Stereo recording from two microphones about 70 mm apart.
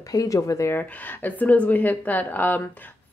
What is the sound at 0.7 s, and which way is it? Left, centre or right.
A woman's voice, left.